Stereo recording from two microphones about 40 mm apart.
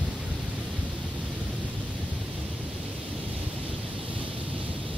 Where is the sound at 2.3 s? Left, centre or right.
Right.